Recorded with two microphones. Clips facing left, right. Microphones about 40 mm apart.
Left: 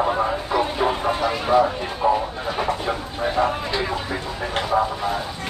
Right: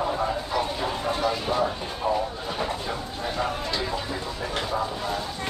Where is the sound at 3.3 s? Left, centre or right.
Left.